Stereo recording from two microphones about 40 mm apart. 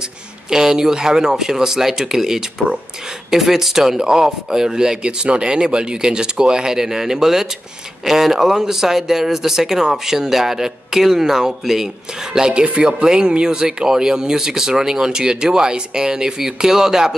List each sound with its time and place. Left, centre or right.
0.5 s speech: centre